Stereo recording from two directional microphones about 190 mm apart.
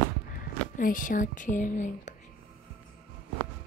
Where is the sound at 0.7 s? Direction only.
45° left (ahead or behind).